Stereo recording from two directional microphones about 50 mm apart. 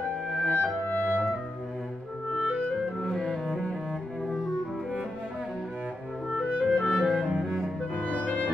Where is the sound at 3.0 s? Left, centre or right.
Centre.